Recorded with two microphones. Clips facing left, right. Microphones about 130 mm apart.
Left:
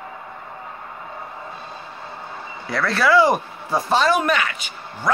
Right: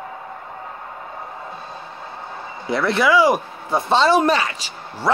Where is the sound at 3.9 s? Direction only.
25° right (ahead or behind).